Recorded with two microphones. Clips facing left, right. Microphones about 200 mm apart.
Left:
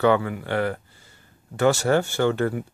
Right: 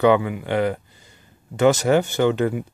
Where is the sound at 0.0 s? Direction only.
15° right (ahead or behind).